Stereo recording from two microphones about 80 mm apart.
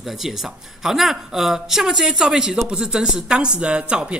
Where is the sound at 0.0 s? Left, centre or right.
Centre.